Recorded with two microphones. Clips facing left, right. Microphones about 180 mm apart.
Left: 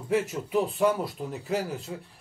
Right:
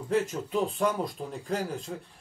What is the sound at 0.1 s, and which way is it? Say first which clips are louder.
Speech: left 2 dB; 10° left (ahead or behind).